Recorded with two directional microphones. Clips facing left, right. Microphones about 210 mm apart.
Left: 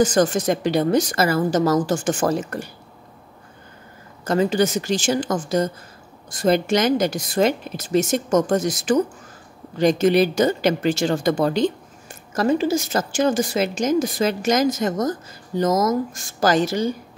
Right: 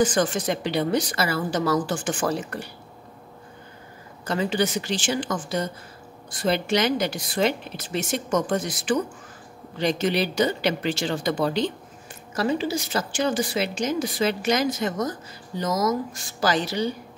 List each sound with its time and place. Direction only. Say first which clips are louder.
0.0 s speech: left 4 dB; 45° left (ahead or behind)
4.2 s speech: left 5 dB; 45° left (ahead or behind)